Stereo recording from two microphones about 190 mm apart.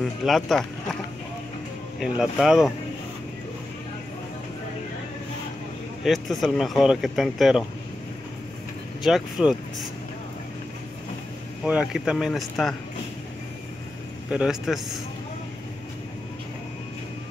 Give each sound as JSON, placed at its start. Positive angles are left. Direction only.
{"t": 0.0, "sound": "speech", "side_deg": 0}
{"t": 2.0, "sound": "speech", "side_deg": 0}
{"t": 6.0, "sound": "speech", "side_deg": 0}
{"t": 9.0, "sound": "speech", "side_deg": 0}
{"t": 11.6, "sound": "speech", "side_deg": -5}
{"t": 14.3, "sound": "speech", "side_deg": -5}